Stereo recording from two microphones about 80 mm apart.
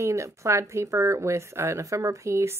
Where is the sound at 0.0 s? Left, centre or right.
Right.